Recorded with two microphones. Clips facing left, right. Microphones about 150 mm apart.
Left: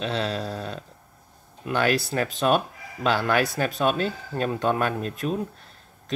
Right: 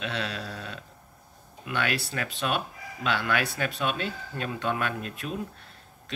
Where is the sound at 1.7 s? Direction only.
40° left (ahead or behind).